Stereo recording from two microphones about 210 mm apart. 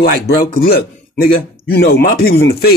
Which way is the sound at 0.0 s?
45° left (ahead or behind).